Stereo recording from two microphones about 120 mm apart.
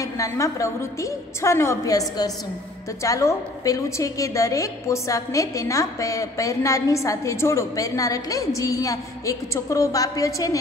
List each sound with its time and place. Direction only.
0.0 s a woman's voice: 25° left (ahead or behind)